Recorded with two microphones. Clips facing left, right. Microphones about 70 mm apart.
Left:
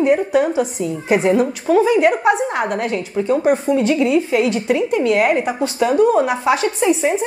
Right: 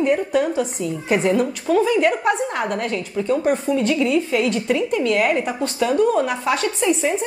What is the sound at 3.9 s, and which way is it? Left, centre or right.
A woman's voice, centre.